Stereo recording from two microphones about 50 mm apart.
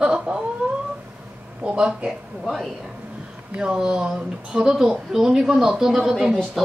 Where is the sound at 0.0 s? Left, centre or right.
Centre.